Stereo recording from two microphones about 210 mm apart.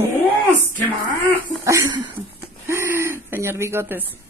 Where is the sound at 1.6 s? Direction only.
20° right (ahead or behind).